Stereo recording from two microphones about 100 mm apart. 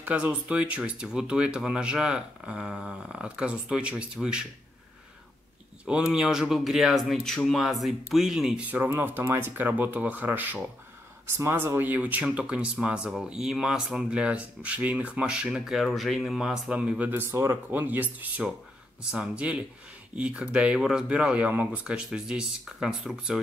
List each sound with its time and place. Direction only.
0.0 s speech: 15° right (ahead or behind)
5.9 s speech: 10° right (ahead or behind)
8.6 s speech: 15° right (ahead or behind)